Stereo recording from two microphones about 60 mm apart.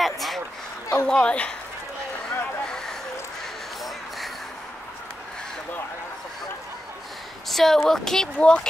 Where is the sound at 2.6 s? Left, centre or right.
Centre.